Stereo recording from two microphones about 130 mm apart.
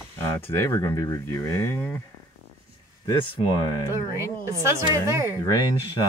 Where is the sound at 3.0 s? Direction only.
35° left (ahead or behind).